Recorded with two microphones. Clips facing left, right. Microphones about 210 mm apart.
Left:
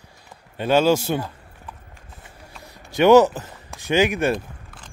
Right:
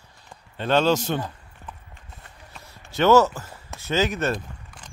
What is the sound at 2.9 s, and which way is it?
Speech, 15° left (ahead or behind).